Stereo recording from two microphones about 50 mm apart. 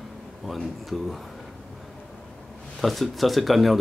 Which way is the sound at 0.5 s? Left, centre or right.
Centre.